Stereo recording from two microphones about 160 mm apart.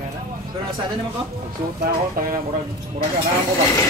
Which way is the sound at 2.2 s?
65° right (ahead or behind).